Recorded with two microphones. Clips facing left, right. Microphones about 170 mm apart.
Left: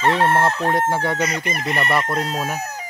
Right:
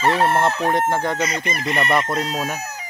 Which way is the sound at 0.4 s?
5° right (ahead or behind).